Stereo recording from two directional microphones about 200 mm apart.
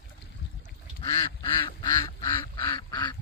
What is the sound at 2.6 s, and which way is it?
Duck, 25° left (ahead or behind).